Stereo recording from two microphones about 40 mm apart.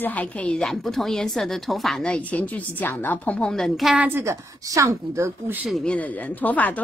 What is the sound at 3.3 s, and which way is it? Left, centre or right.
Speech, left.